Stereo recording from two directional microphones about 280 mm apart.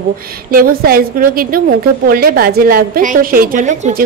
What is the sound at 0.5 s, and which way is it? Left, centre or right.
A woman's voice, right.